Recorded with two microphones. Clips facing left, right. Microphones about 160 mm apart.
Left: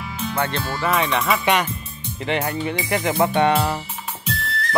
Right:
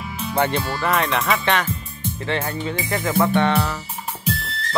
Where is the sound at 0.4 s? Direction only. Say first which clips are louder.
Right 4 dB; 15° right (ahead or behind).